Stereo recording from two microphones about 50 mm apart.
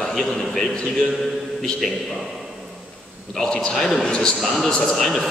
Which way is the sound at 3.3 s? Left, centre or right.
Centre.